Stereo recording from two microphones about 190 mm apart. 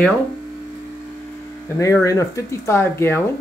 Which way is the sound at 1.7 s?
15° left (ahead or behind).